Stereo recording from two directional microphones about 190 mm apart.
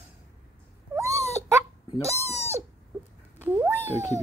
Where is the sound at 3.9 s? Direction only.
35° left (ahead or behind).